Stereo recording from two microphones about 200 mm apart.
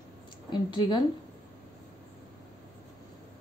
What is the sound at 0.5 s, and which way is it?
Speech, 25° left (ahead or behind).